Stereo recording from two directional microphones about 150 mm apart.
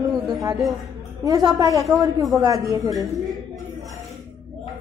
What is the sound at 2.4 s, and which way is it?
Speech, 20° right (ahead or behind).